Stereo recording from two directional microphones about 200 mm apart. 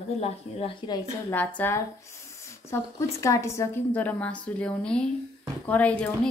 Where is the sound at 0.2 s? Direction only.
30° left (ahead or behind).